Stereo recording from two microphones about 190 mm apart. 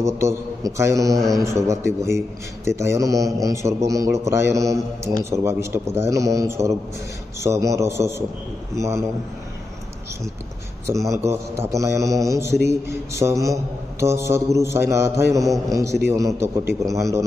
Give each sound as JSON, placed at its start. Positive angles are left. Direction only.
{"t": 0.0, "sound": "a man's voice", "side_deg": -15}
{"t": 3.2, "sound": "a man's voice", "side_deg": 0}
{"t": 3.4, "sound": "a man's voice", "side_deg": -15}
{"t": 11.1, "sound": "a man's voice", "side_deg": -15}